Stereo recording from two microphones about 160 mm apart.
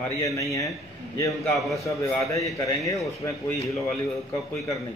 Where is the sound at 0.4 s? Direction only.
20° left (ahead or behind).